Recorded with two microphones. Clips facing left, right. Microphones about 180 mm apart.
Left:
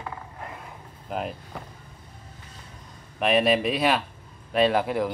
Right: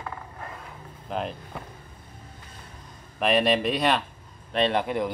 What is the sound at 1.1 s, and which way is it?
Vehicle, 5° left (ahead or behind).